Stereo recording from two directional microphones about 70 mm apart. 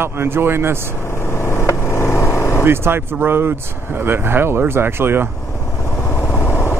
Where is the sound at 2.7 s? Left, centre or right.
Right.